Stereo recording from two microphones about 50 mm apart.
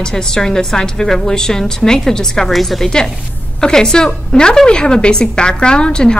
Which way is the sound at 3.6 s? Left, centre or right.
Centre.